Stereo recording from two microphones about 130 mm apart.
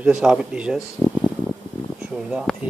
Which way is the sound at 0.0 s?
5° right (ahead or behind).